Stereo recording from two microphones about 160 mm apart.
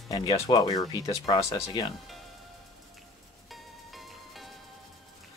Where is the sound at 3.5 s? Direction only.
Centre (ahead or behind).